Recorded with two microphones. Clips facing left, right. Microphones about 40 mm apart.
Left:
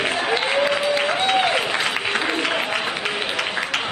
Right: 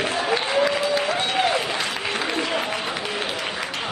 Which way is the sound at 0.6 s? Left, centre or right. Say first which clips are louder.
Left 2 dB; left.